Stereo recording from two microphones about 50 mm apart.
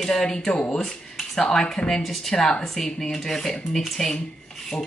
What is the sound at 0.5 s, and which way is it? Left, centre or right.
Speech, left.